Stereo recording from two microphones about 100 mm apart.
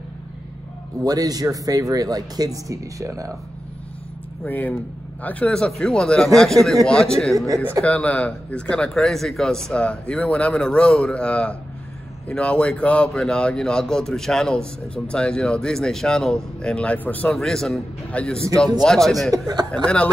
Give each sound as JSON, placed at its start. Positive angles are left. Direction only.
{"t": 1.0, "sound": "speech", "side_deg": -40}
{"t": 4.5, "sound": "a man's voice", "side_deg": 15}
{"t": 7.3, "sound": "speech", "side_deg": -35}
{"t": 7.8, "sound": "a man's voice", "side_deg": 15}
{"t": 17.3, "sound": "speech", "side_deg": 5}
{"t": 19.3, "sound": "speech", "side_deg": -45}